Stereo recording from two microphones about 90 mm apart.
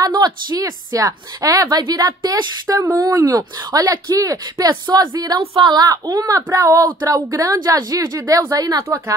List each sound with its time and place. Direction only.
0.1 s a woman's voice: 50° right (ahead or behind); by 9.1 s 35° right (ahead or behind)